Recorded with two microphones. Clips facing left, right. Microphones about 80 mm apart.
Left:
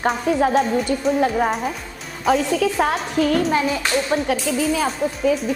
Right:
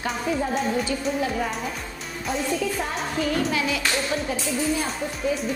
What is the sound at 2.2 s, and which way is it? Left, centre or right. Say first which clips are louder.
A child's voice: left 8 dB; left.